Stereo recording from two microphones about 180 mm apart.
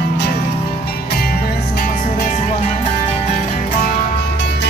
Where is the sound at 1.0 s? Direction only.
60° left (ahead or behind).